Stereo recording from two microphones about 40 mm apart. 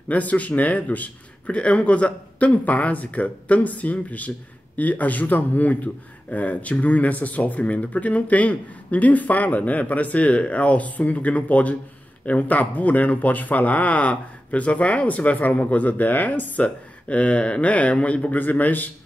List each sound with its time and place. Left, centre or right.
0.1 s speech: left
18.4 s speech: left